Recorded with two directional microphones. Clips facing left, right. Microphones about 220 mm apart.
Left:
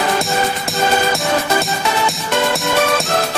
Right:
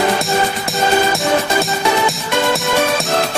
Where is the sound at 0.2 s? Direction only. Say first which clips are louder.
Right 1 dB; centre (ahead or behind).